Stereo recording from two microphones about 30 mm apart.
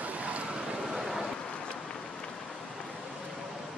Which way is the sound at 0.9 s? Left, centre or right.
Centre.